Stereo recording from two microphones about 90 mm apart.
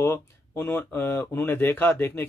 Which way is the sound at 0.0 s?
25° left (ahead or behind).